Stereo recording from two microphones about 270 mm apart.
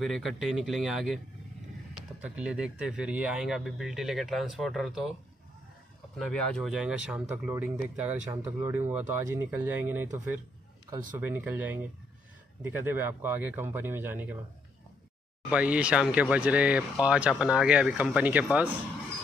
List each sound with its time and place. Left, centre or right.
0.0 s speech: centre
2.2 s speech: centre
6.1 s speech: centre
15.5 s speech: centre